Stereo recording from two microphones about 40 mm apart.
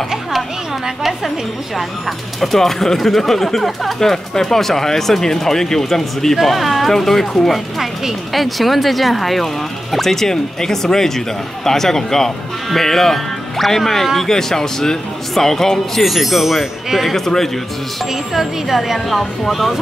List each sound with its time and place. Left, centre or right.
0.8 s speech: centre
18.3 s speech: centre